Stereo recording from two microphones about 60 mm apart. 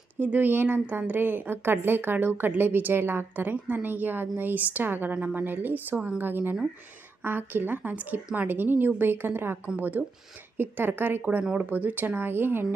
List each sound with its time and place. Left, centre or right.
0.2 s a woman's voice: right